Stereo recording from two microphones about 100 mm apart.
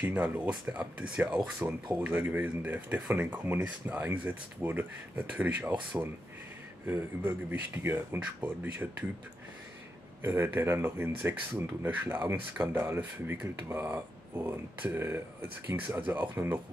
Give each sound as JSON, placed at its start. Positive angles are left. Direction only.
{"t": 0.0, "sound": "speech", "side_deg": -15}
{"t": 7.8, "sound": "speech", "side_deg": -20}
{"t": 10.2, "sound": "speech", "side_deg": -20}